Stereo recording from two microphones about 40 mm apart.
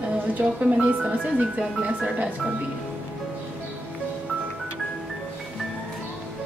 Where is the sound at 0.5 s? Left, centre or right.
Right.